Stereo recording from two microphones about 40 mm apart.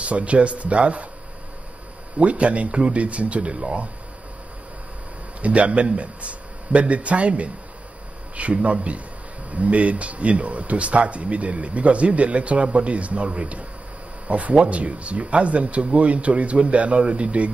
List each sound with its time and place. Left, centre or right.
0.0 s speech: right
2.1 s speech: right
5.4 s speech: right